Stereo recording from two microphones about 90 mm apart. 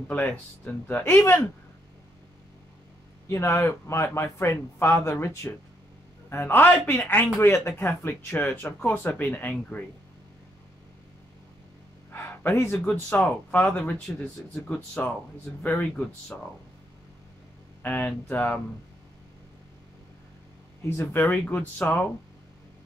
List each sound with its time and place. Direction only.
0.1 s speech: 15° left (ahead or behind)
3.3 s speech: 30° left (ahead or behind)
12.1 s speech: 20° left (ahead or behind)
17.8 s speech: 20° left (ahead or behind)
20.8 s speech: 30° left (ahead or behind)